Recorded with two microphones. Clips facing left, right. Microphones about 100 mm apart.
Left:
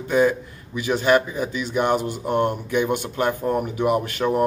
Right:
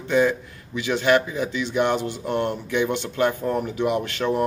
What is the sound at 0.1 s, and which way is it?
Speech, 10° left (ahead or behind).